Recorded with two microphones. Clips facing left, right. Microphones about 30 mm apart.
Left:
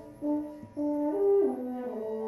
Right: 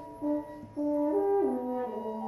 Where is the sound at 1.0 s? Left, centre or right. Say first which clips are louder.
Left 2 dB; centre.